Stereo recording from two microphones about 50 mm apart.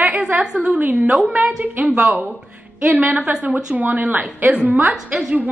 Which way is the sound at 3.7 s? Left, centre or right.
Right.